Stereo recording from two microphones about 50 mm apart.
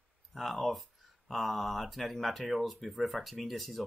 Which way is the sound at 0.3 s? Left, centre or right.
Centre.